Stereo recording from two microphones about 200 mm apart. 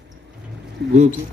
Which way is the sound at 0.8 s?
60° right (ahead or behind).